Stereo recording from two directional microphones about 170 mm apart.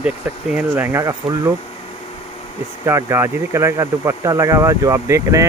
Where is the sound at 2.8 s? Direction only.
15° right (ahead or behind).